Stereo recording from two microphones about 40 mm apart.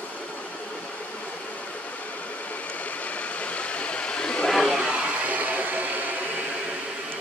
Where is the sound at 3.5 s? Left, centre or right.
Left.